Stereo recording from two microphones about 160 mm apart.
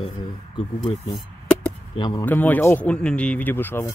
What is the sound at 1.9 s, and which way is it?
Speech, 25° left (ahead or behind).